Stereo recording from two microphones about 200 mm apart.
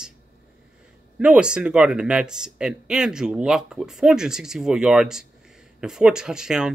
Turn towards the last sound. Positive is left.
turn(degrees=-5)  # may be behind; listen again after turning